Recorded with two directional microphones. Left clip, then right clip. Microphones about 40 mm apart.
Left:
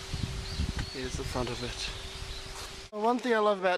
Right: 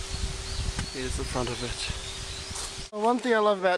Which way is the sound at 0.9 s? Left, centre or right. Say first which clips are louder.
Right 3 dB; left.